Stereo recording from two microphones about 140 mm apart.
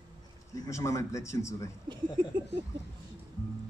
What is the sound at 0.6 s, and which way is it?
Speech, 20° left (ahead or behind).